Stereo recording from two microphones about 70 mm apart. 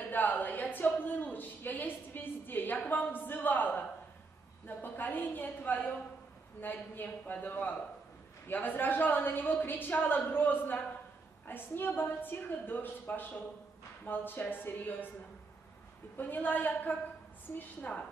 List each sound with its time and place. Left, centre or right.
0.1 s a sound: left
0.9 s a woman's voice: left
16.2 s a woman's voice: left